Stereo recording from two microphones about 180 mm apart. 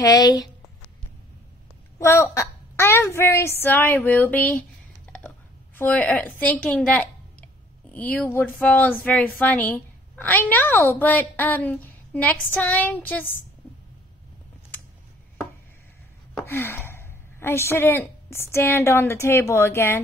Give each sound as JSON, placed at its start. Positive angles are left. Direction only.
{"t": 0.0, "sound": "speech", "side_deg": 20}
{"t": 2.0, "sound": "a woman's voice", "side_deg": 15}
{"t": 16.4, "sound": "a woman's voice", "side_deg": 10}